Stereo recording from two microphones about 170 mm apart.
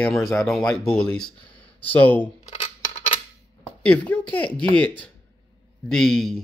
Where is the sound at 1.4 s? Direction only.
30° left (ahead or behind).